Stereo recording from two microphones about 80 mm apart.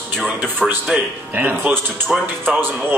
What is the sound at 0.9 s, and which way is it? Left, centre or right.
Speech, centre.